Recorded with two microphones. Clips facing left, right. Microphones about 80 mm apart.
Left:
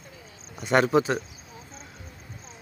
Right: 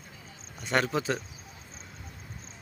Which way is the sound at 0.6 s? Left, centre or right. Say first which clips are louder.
Left 7 dB; centre.